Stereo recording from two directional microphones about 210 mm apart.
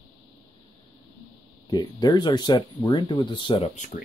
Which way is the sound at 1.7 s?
20° left (ahead or behind).